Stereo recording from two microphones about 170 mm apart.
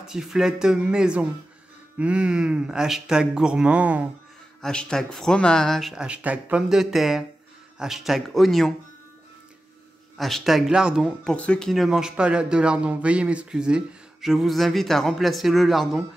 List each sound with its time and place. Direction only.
0.0 s speech: centre (ahead or behind)
4.6 s speech: 5° left (ahead or behind)
10.1 s speech: centre (ahead or behind)